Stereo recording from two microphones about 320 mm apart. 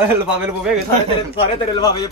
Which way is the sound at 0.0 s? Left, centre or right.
Centre.